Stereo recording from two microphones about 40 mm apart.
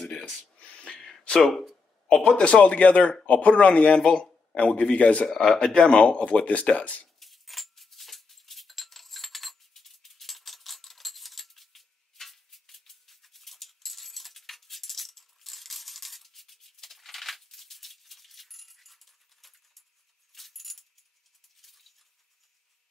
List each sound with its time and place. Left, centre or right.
0.6 s a sound: left
0.8 s a sound: centre
1.4 s speech: centre
2.2 s a man's voice: left
5.3 s speech: centre
5.6 s speech: centre
5.9 s speech: left
7.2 s dog: centre
20.3 s keys jangling: centre
21.5 s a sound: centre